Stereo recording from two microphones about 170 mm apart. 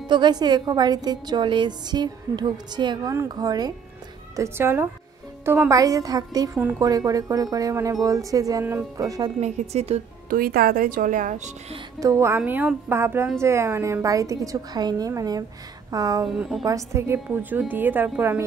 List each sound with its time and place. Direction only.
0.1 s a woman's voice: 25° right (ahead or behind)
9.4 s a woman's voice: 40° right (ahead or behind)
10.3 s speech: 60° right (ahead or behind); by 11.8 s 45° right (ahead or behind)
12.0 s a woman's voice: 15° right (ahead or behind)
16.3 s a woman's voice: centre (ahead or behind)
16.6 s a woman's voice: 20° right (ahead or behind)